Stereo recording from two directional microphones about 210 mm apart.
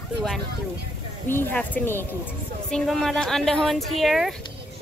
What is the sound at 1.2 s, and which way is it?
Speech, 10° left (ahead or behind).